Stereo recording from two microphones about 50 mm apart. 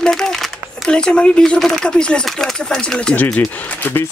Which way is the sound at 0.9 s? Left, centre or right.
Centre.